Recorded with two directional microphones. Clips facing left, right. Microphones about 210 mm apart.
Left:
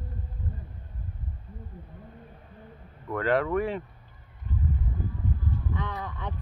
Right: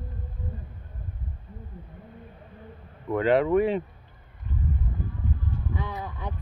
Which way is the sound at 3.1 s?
20° right (ahead or behind).